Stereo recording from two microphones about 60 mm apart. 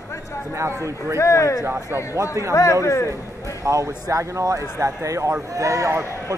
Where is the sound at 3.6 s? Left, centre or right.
Right.